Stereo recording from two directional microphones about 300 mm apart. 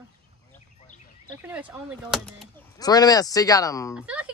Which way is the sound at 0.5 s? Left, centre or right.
Left.